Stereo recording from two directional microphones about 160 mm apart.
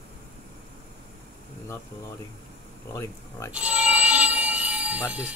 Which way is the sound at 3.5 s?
5° right (ahead or behind).